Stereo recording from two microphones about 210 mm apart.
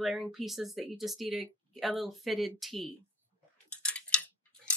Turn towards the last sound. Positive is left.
turn(degrees=5)  # may be behind; listen again after turning